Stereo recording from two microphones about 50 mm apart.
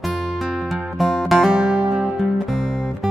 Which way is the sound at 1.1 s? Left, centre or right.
Centre.